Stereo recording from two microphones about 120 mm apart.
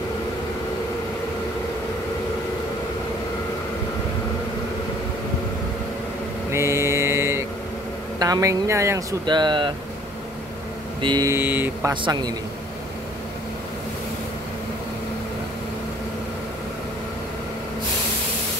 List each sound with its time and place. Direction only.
6.5 s mantra: 20° right (ahead or behind)
8.2 s speech: 30° right (ahead or behind)
9.2 s speech: 40° right (ahead or behind)
11.0 s vehicle: 40° right (ahead or behind)
11.2 s speech: 15° right (ahead or behind)
11.9 s speech: 40° right (ahead or behind)